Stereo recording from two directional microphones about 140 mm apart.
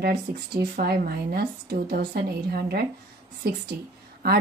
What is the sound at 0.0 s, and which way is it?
A woman's voice, 90° right.